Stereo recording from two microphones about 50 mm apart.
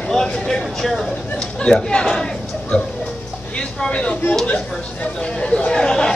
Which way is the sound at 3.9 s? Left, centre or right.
Left.